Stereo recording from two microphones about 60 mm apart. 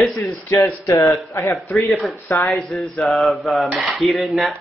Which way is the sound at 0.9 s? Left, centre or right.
Left.